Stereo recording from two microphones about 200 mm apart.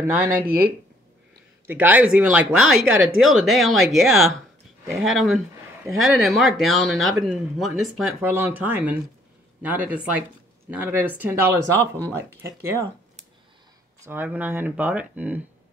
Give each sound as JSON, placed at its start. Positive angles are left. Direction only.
{"t": 0.2, "sound": "speech", "side_deg": -50}
{"t": 1.7, "sound": "speech", "side_deg": -10}
{"t": 14.0, "sound": "speech", "side_deg": -10}